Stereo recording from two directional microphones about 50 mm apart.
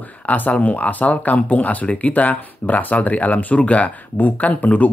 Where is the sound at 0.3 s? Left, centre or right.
Left.